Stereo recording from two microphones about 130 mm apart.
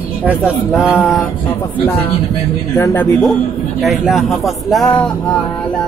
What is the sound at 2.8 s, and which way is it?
Speech, 20° left (ahead or behind).